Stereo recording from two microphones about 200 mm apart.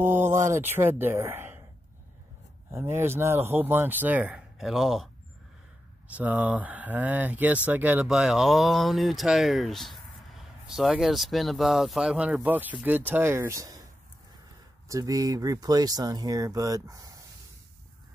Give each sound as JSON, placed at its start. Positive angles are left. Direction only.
{"t": 0.0, "sound": "speech", "side_deg": -10}
{"t": 2.7, "sound": "speech", "side_deg": -10}
{"t": 6.1, "sound": "speech", "side_deg": -5}
{"t": 14.9, "sound": "speech", "side_deg": -15}